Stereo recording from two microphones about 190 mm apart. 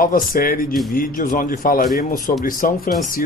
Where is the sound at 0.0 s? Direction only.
50° left (ahead or behind).